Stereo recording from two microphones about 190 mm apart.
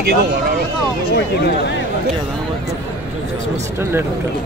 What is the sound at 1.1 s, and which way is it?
Speech, 65° left (ahead or behind).